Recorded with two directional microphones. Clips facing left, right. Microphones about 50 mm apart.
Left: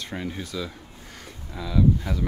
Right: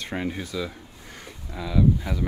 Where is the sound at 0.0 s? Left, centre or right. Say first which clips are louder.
Right 3 dB; right.